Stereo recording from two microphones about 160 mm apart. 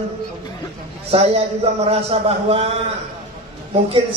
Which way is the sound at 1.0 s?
40° right (ahead or behind).